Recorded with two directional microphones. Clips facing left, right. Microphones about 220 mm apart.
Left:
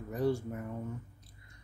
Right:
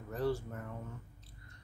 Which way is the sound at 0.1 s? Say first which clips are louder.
Left 3 dB; 10° left (ahead or behind).